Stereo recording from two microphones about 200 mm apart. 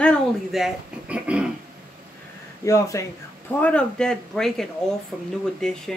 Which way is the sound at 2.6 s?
15° left (ahead or behind).